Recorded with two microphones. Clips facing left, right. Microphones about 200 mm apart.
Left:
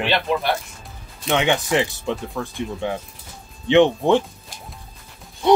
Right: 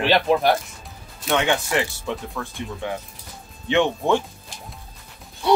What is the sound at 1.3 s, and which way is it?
Speech, 15° left (ahead or behind).